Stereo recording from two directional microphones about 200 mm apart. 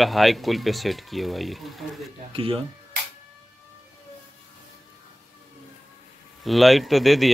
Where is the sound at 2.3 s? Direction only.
25° right (ahead or behind).